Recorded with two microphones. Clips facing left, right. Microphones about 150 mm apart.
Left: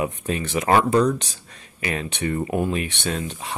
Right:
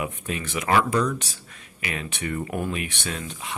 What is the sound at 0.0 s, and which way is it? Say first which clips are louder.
Speech: left 5 dB; 35° left (ahead or behind).